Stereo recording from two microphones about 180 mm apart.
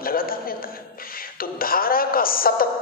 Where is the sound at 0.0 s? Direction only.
55° left (ahead or behind).